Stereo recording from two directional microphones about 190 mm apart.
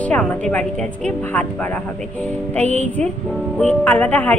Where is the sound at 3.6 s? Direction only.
10° left (ahead or behind).